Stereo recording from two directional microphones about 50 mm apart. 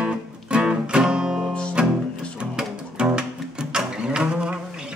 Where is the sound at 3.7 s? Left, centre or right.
Centre.